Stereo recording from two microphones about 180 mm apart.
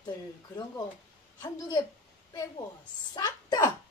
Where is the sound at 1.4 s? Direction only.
25° left (ahead or behind).